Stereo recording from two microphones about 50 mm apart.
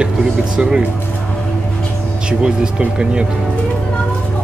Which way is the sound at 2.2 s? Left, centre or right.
Centre.